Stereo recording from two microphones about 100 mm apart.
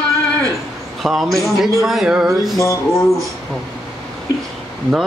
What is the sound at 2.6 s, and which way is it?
Speech, 30° left (ahead or behind).